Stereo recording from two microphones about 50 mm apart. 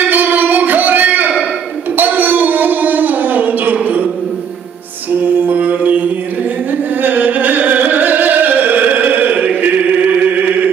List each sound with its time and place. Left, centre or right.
0.1 s a sound: right
5.2 s music: right
9.6 s chant: right